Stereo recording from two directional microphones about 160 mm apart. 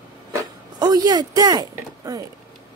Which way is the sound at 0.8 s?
25° right (ahead or behind).